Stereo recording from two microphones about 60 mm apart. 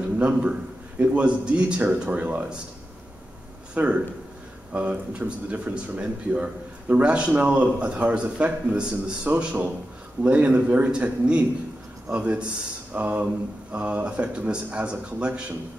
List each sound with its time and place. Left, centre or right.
0.2 s speech: right
3.7 s speech: right